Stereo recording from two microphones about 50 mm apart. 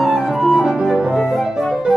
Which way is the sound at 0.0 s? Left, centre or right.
Centre.